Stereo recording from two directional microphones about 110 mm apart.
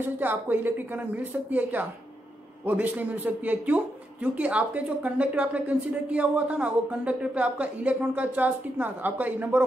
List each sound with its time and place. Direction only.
0.0 s speech: 15° right (ahead or behind)